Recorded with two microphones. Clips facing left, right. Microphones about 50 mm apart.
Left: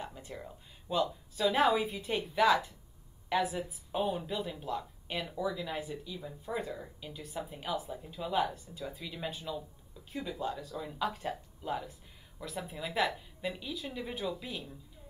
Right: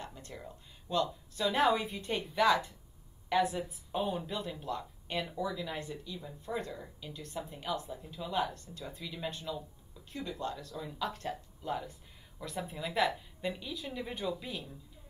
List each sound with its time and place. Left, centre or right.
0.0 s a woman's voice: centre